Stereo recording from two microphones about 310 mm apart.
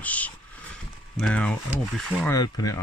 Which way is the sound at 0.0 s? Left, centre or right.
Centre.